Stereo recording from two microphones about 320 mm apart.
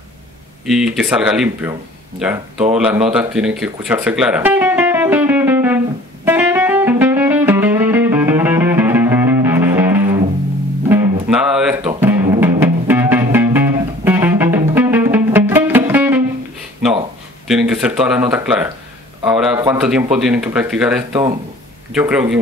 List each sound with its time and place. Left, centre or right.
0.7 s speech: centre
6.2 s music: centre
17.5 s speech: centre